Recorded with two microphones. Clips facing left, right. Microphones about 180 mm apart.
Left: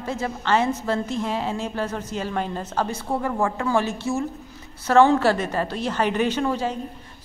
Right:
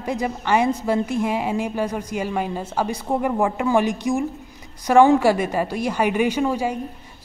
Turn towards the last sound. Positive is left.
turn(degrees=-10)  # may be behind; listen again after turning